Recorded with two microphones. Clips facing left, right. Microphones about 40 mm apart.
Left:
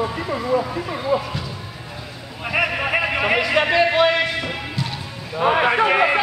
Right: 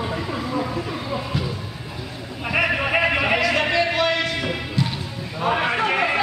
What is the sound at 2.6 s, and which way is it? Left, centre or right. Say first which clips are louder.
Speech: right 1 dB; centre.